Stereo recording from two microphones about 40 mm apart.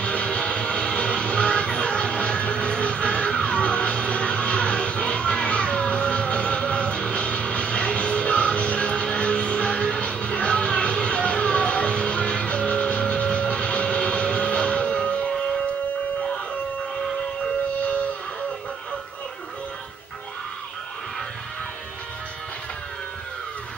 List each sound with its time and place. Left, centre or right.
0.0 s music: left